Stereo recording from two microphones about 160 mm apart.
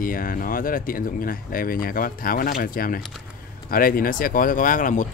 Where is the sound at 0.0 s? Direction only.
60° left (ahead or behind).